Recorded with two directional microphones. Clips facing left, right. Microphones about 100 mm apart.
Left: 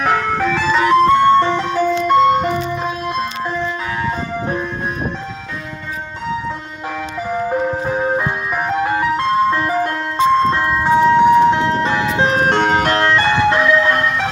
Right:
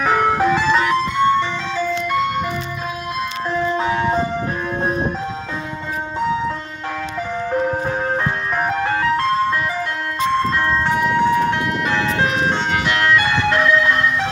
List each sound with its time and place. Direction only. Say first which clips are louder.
0.2 s ice cream truck: right 2 dB; 15° right (ahead or behind)
1.0 s music: left 6 dB; 65° left (ahead or behind)
1.5 s ice cream truck: left 5 dB; 20° left (ahead or behind)
3.7 s ice cream truck: right 3 dB; 25° right (ahead or behind)
7.3 s ice cream truck: left 2 dB; 10° left (ahead or behind)
8.7 s music: left 4 dB; 15° left (ahead or behind)
10.1 s ice cream truck: left 5 dB; 20° left (ahead or behind)
12.4 s music: left 5 dB; 60° left (ahead or behind)
12.7 s ice cream truck: left 3 dB; 35° left (ahead or behind)